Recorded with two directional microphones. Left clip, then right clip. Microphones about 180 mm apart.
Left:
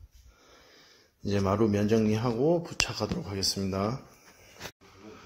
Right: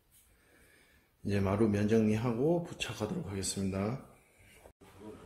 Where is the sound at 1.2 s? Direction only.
25° left (ahead or behind).